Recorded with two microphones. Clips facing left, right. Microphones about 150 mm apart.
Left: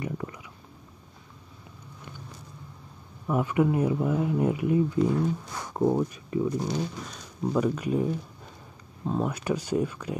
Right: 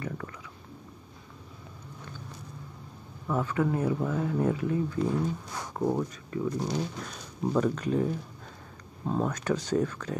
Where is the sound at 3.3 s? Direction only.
15° left (ahead or behind).